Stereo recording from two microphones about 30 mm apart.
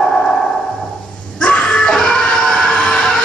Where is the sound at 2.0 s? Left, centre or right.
Left.